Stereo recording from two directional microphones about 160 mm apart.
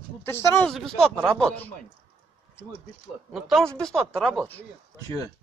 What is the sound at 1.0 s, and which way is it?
Speech, 5° left (ahead or behind).